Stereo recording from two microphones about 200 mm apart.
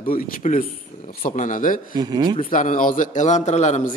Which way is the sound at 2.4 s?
40° left (ahead or behind).